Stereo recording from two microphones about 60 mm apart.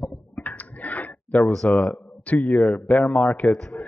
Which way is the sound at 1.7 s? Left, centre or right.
Left.